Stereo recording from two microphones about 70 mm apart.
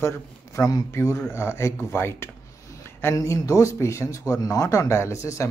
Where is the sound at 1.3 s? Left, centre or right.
Left.